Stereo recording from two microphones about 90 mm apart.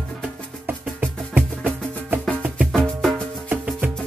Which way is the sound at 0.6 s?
20° right (ahead or behind).